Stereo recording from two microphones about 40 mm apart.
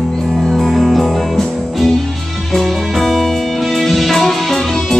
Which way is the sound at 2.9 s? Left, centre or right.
Centre.